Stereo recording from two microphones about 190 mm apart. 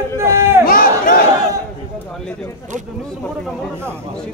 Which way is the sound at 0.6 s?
45° left (ahead or behind).